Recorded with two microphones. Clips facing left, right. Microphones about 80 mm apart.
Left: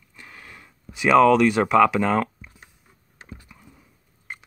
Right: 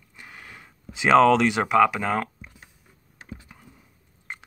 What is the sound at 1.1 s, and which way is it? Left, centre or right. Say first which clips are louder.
Speech: left 1 dB; right.